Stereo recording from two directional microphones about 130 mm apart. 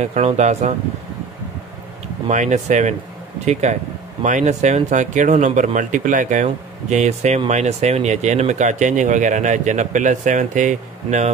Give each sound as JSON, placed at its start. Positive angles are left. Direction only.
{"t": 0.0, "sound": "speech", "side_deg": -60}
{"t": 2.2, "sound": "speech", "side_deg": -65}